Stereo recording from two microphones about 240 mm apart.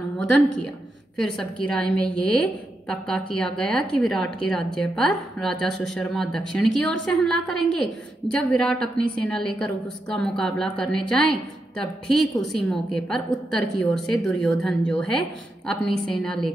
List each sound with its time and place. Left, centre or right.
1.1 s a woman's voice: centre